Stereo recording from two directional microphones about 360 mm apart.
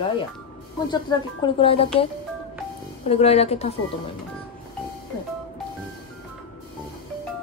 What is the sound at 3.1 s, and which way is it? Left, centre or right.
Speech, centre.